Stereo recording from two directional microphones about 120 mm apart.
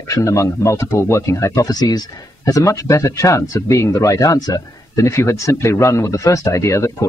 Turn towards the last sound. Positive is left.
turn(degrees=25)  # may be behind; listen again after turning